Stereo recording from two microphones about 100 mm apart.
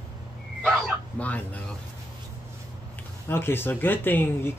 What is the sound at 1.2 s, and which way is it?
Speech, 15° left (ahead or behind).